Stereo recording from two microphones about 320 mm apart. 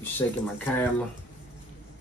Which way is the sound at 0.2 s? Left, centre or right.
Centre.